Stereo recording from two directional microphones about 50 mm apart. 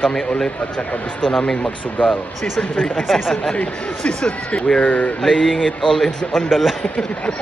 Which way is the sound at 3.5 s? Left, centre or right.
Left.